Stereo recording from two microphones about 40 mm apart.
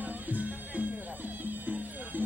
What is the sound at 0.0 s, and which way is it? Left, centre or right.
Music, right.